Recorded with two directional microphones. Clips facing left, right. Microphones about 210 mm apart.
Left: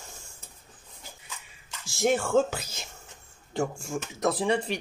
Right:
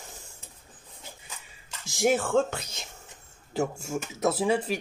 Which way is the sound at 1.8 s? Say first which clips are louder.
Right 1 dB; 15° right (ahead or behind).